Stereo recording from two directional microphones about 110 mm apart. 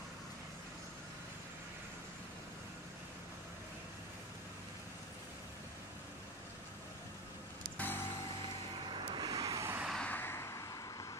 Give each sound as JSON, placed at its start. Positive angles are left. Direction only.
{"t": 7.7, "sound": "music", "side_deg": 15}
{"t": 8.9, "sound": "vehicle", "side_deg": -40}
{"t": 9.9, "sound": "vehicle", "side_deg": 15}